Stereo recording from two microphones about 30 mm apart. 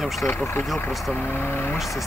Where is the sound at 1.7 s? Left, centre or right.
Centre.